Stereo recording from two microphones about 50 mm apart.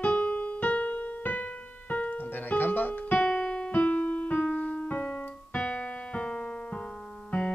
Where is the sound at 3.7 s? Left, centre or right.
Left.